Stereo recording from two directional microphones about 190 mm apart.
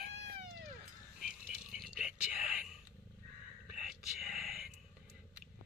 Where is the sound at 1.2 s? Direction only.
5° right (ahead or behind).